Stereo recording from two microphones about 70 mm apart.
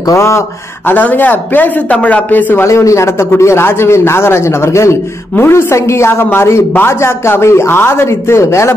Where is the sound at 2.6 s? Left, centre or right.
Left.